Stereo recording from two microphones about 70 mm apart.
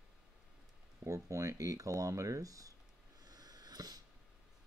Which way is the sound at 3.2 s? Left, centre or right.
Right.